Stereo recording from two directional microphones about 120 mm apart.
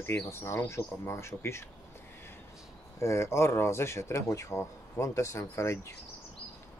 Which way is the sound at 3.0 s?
25° left (ahead or behind).